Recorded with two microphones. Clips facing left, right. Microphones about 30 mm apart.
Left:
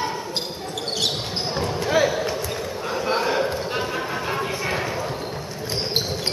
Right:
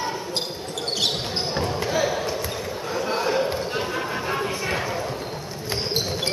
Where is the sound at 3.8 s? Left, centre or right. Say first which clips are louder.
Left 1 dB; centre.